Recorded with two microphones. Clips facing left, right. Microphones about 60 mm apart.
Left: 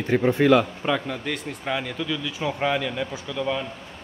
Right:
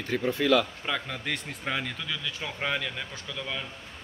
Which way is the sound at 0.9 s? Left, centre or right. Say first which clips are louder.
Left 6 dB; centre.